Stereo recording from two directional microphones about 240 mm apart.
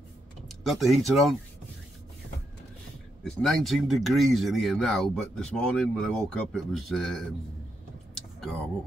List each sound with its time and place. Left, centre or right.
0.5 s speech: centre
3.3 s speech: centre